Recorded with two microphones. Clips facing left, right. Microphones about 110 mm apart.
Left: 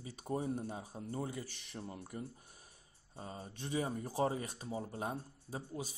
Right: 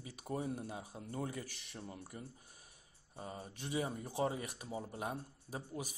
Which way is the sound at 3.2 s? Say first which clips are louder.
Even; 25° left (ahead or behind).